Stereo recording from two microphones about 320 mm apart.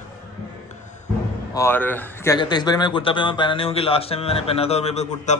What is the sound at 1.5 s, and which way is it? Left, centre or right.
A man's voice, centre.